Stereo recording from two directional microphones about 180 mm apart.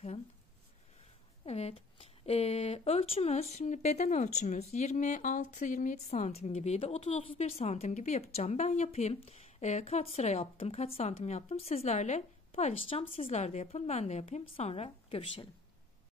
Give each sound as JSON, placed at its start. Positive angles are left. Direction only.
{"t": 1.4, "sound": "speech", "side_deg": 35}